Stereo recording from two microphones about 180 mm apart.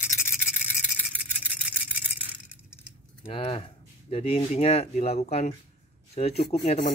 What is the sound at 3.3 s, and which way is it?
Speech, 30° left (ahead or behind).